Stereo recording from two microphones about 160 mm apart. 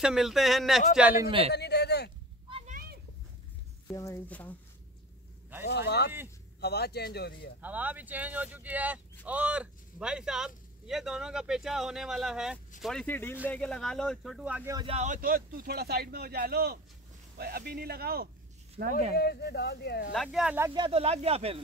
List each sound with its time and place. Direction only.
0.0 s speech: 5° right (ahead or behind)
1.5 s a sound: 90° left
2.7 s a sound: 70° right (ahead or behind)
3.9 s speech: 20° left (ahead or behind)
5.7 s speech: 90° left
7.6 s speech: 10° right (ahead or behind)
14.9 s speech: 45° right (ahead or behind)
15.1 s speech: 65° right (ahead or behind)
18.8 s speech: 60° right (ahead or behind)
19.1 s speech: 85° left
20.1 s speech: 5° right (ahead or behind)
20.7 s speech: 35° right (ahead or behind)